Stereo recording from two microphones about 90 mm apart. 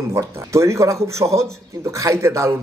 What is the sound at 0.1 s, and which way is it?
Speech, 35° right (ahead or behind).